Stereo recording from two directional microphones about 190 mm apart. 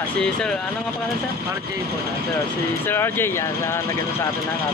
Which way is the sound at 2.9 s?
10° left (ahead or behind).